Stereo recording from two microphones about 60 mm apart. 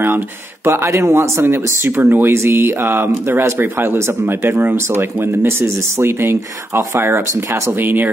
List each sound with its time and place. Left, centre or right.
0.7 s speech: right
1.4 s speech: right
7.8 s speech: right